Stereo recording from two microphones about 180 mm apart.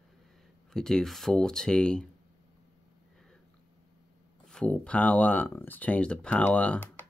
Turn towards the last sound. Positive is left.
turn(degrees=10)  # may be behind; listen again after turning